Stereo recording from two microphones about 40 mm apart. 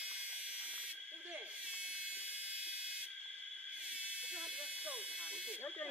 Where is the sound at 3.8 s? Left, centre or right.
Right.